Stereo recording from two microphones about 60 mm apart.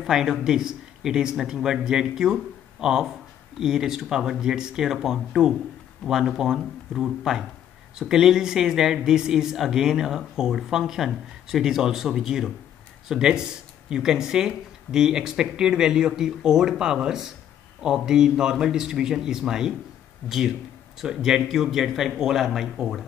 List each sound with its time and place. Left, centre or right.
0.0 s speech: centre